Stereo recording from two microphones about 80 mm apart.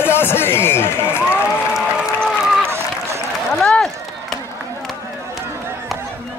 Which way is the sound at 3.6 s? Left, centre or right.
Centre.